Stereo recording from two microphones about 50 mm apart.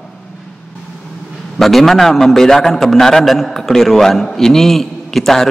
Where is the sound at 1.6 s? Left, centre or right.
Centre.